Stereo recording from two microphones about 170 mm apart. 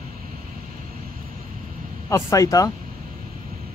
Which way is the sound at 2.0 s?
20° left (ahead or behind).